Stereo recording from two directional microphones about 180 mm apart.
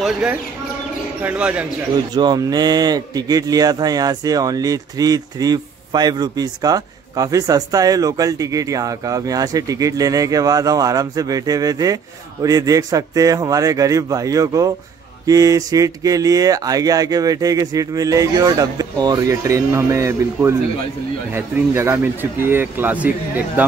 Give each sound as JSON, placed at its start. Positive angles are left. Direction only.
{"t": 0.0, "sound": "speech", "side_deg": -5}
{"t": 2.1, "sound": "speech", "side_deg": -25}